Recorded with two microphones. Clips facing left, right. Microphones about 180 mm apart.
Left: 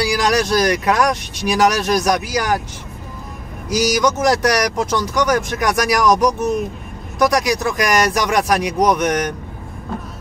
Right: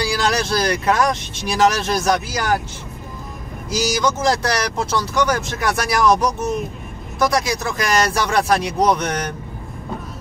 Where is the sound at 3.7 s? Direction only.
15° left (ahead or behind).